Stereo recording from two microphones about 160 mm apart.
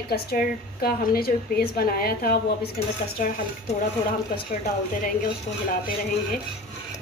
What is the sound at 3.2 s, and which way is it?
Speech, 60° left (ahead or behind).